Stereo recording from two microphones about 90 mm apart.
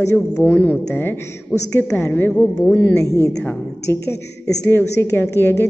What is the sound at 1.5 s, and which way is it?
Speech, 25° right (ahead or behind).